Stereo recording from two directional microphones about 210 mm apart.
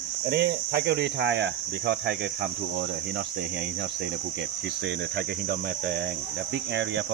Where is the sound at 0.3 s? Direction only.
50° right (ahead or behind).